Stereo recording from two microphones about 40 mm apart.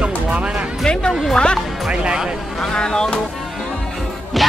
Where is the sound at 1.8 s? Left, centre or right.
Centre.